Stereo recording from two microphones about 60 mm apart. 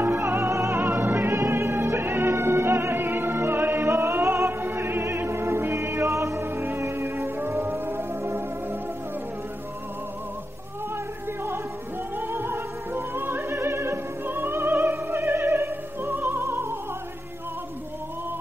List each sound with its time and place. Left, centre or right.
0.0 s music: right
0.7 s music: right
6.4 s music: right
12.2 s opera: right